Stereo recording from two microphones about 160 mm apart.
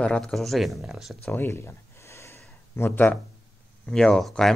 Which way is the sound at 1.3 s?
15° left (ahead or behind).